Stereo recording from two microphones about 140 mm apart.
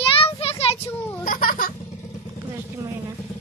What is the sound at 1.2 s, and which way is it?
Baby laughter, 85° left.